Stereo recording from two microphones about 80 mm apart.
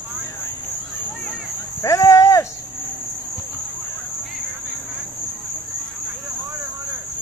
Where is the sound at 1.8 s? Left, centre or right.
Left.